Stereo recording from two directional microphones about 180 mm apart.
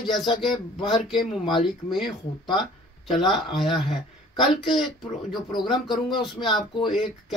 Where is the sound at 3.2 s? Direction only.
Centre (ahead or behind).